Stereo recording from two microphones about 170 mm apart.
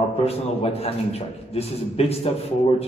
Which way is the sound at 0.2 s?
35° left (ahead or behind).